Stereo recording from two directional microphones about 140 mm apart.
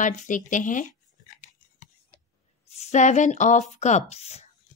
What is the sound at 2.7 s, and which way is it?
A woman's voice, 55° left (ahead or behind).